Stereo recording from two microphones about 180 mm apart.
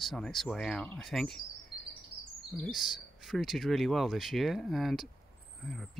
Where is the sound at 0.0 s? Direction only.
Centre (ahead or behind).